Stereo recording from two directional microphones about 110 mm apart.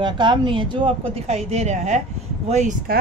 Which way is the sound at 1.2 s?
75° right (ahead or behind).